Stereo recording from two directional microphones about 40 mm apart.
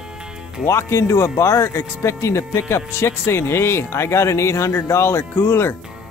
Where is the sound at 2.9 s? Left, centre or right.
Left.